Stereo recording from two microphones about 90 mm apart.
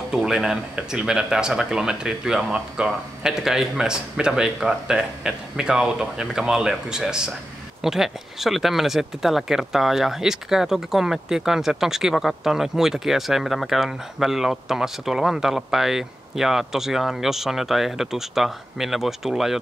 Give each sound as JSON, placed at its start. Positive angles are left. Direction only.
{"t": 0.1, "sound": "speech", "side_deg": -5}